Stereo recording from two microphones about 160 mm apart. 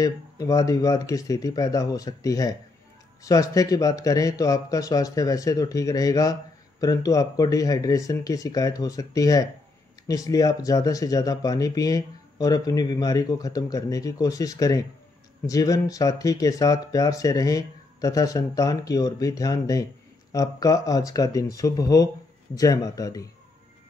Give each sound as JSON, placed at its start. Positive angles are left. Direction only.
{"t": 0.0, "sound": "speech", "side_deg": 20}